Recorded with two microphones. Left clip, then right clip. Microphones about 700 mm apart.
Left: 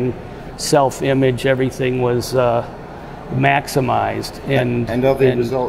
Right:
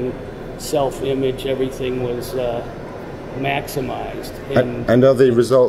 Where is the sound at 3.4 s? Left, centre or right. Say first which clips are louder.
Left 6 dB; left.